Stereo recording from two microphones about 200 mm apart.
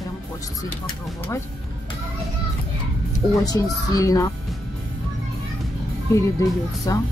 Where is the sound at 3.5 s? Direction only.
15° left (ahead or behind).